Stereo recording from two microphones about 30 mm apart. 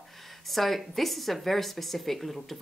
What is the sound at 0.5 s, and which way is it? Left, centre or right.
A woman's voice, centre.